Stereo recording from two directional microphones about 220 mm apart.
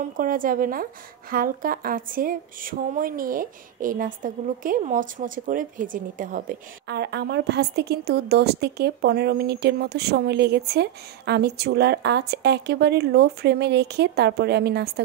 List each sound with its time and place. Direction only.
0.2 s speech: 40° right (ahead or behind)
6.9 s a woman's voice: 50° right (ahead or behind)